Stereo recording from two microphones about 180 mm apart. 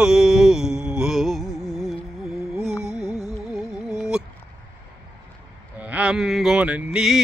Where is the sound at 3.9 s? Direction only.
Centre (ahead or behind).